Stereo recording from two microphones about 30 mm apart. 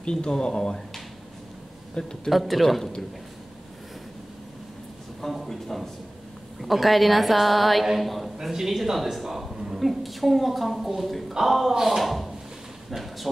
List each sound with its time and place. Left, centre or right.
0.0 s speech: left
2.0 s speech: left
2.3 s a woman's voice: centre
5.5 s a woman's voice: centre
8.4 s speech: centre
9.8 s a woman's voice: centre